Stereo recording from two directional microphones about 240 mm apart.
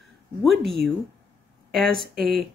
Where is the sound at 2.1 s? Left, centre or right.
Right.